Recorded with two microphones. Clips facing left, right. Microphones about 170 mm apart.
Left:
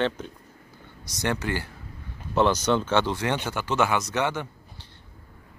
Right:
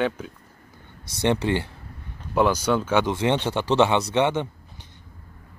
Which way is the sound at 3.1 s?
25° right (ahead or behind).